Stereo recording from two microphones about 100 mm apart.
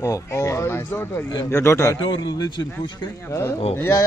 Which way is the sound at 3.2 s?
30° left (ahead or behind).